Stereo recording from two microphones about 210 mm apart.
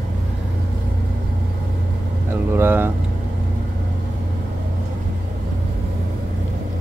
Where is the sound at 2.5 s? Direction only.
10° right (ahead or behind).